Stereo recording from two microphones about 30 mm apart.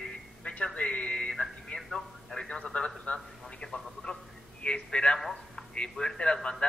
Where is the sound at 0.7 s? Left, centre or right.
Left.